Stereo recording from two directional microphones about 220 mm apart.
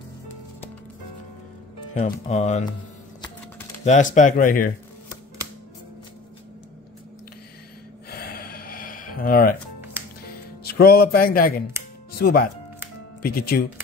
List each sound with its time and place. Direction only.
2.2 s speech: 30° left (ahead or behind)
3.8 s speech: 35° left (ahead or behind)
8.1 s gasp: 45° left (ahead or behind)
9.9 s music: 10° right (ahead or behind)
10.6 s speech: 45° left (ahead or behind)